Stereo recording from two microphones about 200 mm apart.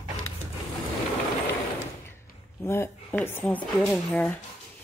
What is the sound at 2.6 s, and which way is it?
A woman's voice, 10° left (ahead or behind).